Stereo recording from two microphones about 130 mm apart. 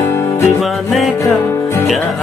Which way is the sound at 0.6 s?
Centre (ahead or behind).